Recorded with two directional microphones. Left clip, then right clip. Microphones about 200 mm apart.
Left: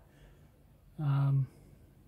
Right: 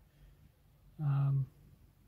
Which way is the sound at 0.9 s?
20° left (ahead or behind).